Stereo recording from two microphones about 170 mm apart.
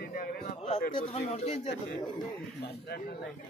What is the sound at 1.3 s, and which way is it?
Speech, 35° left (ahead or behind).